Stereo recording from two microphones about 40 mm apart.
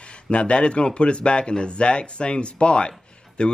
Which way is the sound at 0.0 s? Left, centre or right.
Left.